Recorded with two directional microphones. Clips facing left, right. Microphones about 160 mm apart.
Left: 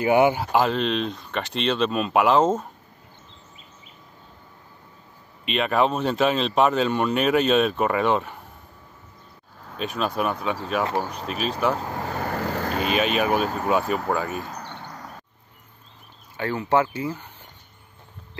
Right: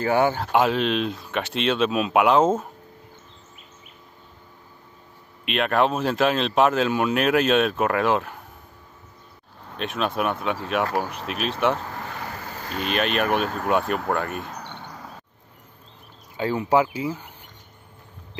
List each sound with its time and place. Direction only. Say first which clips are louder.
0.0 s speech: left 2 dB; 15° left (ahead or behind)
0.5 s speech: right 1 dB; centre (ahead or behind)
5.4 s speech: even; centre (ahead or behind)
9.7 s speech: even; centre (ahead or behind)
12.3 s vehicle: left 9 dB; 75° left (ahead or behind)
12.9 s speech: even; 5° left (ahead or behind)
15.0 s a sound: even; 5° right (ahead or behind)
16.3 s speech: right 1 dB; 15° right (ahead or behind)